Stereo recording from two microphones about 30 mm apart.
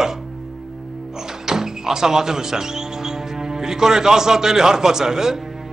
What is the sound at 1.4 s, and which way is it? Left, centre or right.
A man's voice, centre.